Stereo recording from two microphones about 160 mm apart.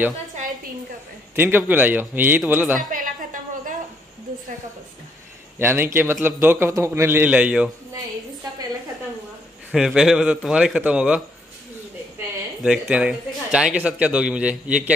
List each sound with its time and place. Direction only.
1.3 s a man's voice: 10° right (ahead or behind)
2.8 s a sound: 60° right (ahead or behind)
5.6 s a man's voice: 15° right (ahead or behind)
9.7 s a man's voice: 5° right (ahead or behind)
12.6 s a man's voice: 5° right (ahead or behind)